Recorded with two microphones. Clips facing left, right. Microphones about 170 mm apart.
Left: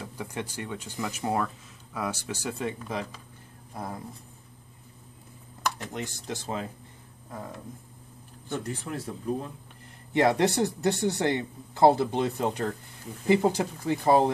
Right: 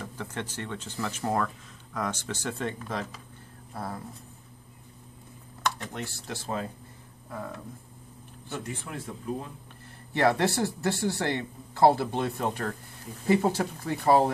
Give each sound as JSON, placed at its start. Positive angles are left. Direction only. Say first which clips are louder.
{"t": 0.0, "sound": "speech", "louder": "left 1 dB", "side_deg": 10}
{"t": 5.9, "sound": "speech", "louder": "left 2 dB", "side_deg": 20}
{"t": 8.5, "sound": "speech", "louder": "left 4 dB", "side_deg": 40}
{"t": 10.1, "sound": "speech", "louder": "left 2 dB", "side_deg": 20}